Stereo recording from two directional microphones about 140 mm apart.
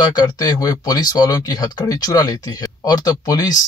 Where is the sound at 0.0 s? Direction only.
30° left (ahead or behind).